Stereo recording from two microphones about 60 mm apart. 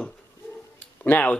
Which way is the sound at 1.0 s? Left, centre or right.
Left.